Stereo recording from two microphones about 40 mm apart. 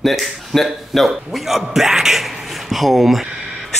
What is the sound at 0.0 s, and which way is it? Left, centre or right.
A man's voice, centre.